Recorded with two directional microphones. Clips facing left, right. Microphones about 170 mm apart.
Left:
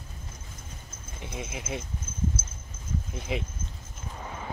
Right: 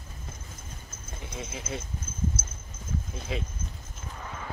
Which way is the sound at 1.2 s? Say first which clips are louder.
Left 2 dB; 15° left (ahead or behind).